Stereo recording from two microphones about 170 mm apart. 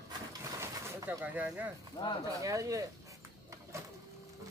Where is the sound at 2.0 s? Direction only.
20° left (ahead or behind).